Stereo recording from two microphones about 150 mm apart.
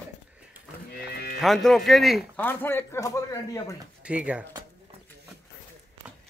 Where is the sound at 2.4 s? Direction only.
15° left (ahead or behind).